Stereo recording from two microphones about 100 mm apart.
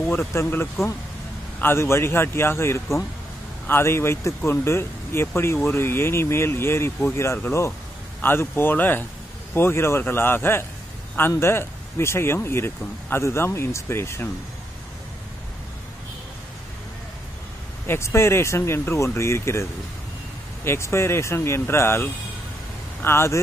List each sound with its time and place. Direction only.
0.0 s speech: 20° left (ahead or behind)
17.8 s speech: 25° left (ahead or behind)